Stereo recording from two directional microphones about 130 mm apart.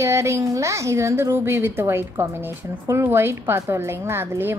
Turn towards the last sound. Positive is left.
turn(degrees=-15)  # may be behind; listen again after turning